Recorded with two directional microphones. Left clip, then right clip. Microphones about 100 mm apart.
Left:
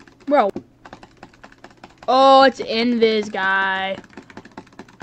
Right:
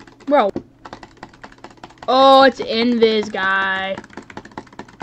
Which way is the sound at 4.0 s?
35° right (ahead or behind).